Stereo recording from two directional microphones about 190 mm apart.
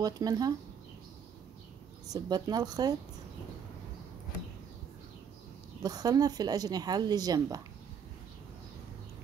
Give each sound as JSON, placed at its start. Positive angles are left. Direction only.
{"t": 0.0, "sound": "speech", "side_deg": -20}
{"t": 2.0, "sound": "speech", "side_deg": -20}
{"t": 5.8, "sound": "speech", "side_deg": -20}